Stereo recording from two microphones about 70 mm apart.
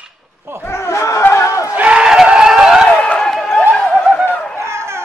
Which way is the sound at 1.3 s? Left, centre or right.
Left.